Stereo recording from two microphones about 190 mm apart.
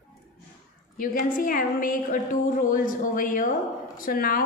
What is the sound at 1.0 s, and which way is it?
A woman's voice, 45° left (ahead or behind).